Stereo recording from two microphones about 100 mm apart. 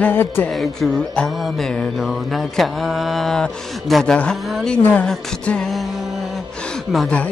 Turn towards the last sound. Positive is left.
turn(degrees=10)  # may be behind; listen again after turning